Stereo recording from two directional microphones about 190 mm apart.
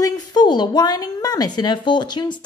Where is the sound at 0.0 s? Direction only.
20° left (ahead or behind).